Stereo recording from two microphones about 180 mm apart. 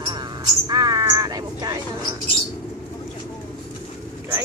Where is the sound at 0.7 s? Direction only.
25° right (ahead or behind).